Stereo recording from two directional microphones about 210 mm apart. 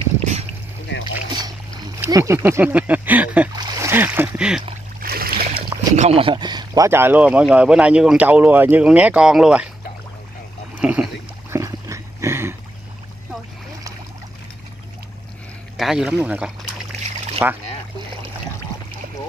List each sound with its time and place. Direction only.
0.2 s boat: 35° right (ahead or behind)
2.0 s speech: 15° right (ahead or behind)
3.5 s speech: 15° right (ahead or behind)
5.0 s a sound: 45° right (ahead or behind)
5.9 s speech: 30° right (ahead or behind); by 9.7 s 5° right (ahead or behind)
10.8 s speech: 5° right (ahead or behind)
11.5 s a sound: 15° right (ahead or behind)
15.8 s speech: centre (ahead or behind)